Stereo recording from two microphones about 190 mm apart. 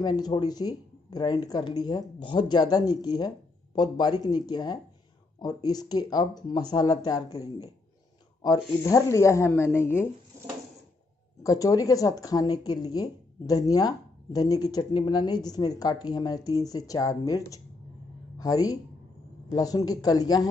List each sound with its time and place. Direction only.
0.0 s speech: 20° left (ahead or behind)
11.4 s speech: 20° left (ahead or behind)